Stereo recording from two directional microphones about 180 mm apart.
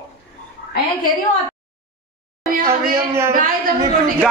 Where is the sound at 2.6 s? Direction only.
15° right (ahead or behind).